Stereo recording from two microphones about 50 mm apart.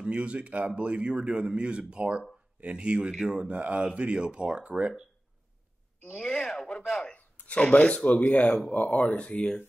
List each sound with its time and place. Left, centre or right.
0.0 s speech: right
6.1 s speech: centre
7.2 s speech: left